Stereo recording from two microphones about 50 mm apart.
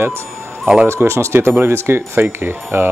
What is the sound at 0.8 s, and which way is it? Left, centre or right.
Speech, right.